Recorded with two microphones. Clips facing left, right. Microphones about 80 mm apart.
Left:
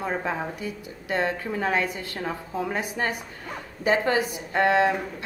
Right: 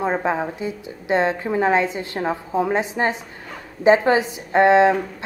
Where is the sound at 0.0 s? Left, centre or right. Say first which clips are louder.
Right 7 dB; right.